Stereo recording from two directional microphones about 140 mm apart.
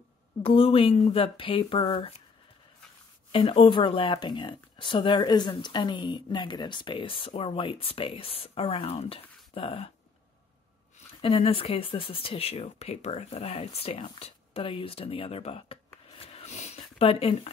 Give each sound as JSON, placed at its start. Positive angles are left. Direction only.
{"t": 0.4, "sound": "speech", "side_deg": 40}
{"t": 3.3, "sound": "speech", "side_deg": 40}
{"t": 11.1, "sound": "speech", "side_deg": 40}